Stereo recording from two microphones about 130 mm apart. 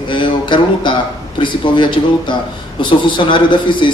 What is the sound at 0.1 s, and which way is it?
A man's voice, 40° left (ahead or behind).